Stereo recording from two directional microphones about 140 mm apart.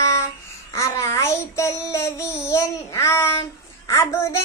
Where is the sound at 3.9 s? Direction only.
20° left (ahead or behind).